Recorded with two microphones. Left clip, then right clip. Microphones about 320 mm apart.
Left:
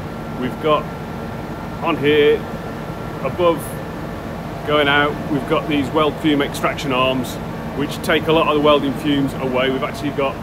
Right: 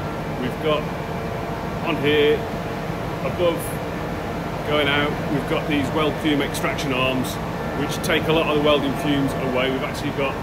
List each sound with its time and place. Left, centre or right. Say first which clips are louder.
0.7 s speech: left 5 dB; centre
1.9 s speech: left 4 dB; centre
3.4 s speech: left 5 dB; centre
4.6 s speech: left 5 dB; centre